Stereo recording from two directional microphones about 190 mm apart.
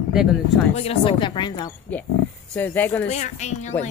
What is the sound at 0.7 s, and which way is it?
Speech, 30° left (ahead or behind).